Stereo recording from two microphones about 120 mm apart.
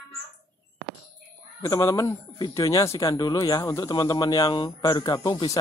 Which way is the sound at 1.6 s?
30° left (ahead or behind).